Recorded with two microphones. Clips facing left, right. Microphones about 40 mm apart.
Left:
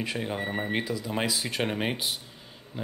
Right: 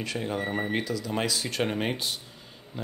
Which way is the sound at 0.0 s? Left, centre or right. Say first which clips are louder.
Even; centre.